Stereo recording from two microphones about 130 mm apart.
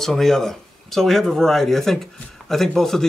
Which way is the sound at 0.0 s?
5° left (ahead or behind).